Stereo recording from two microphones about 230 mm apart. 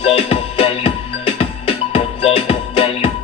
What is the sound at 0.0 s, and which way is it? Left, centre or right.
Music, left.